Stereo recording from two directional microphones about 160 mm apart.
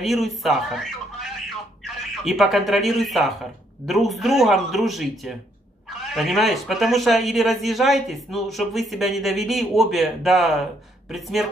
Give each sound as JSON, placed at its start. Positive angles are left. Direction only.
{"t": 0.0, "sound": "speech", "side_deg": 0}